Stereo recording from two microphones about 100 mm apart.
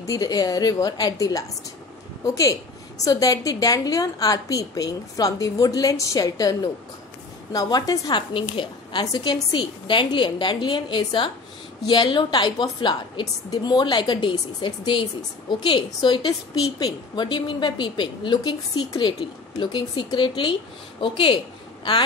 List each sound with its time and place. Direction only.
0.0 s a woman's voice: 35° left (ahead or behind)
3.0 s a woman's voice: 35° left (ahead or behind); by 9.0 s 55° left (ahead or behind)
9.0 s a woman's voice: 45° left (ahead or behind)